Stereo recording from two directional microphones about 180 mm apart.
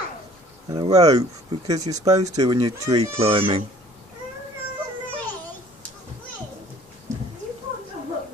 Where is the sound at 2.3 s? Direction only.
25° right (ahead or behind).